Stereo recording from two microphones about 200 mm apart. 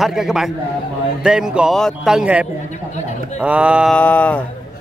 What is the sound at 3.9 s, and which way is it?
Speech, 10° left (ahead or behind).